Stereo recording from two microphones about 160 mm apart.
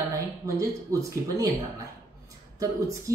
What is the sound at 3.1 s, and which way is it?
Speech, 20° right (ahead or behind).